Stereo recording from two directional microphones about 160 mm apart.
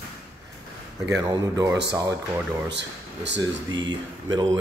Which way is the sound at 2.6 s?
90° right.